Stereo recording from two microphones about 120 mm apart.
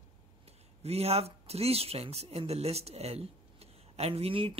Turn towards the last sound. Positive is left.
turn(degrees=-50)  # may be behind; listen again after turning